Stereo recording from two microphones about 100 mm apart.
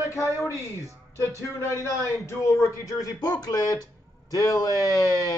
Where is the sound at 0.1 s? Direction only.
30° left (ahead or behind).